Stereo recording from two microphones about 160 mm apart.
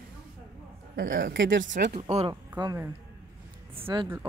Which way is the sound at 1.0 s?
55° right (ahead or behind).